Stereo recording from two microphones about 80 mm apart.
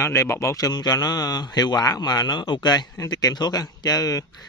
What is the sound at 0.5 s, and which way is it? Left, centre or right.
Speech, left.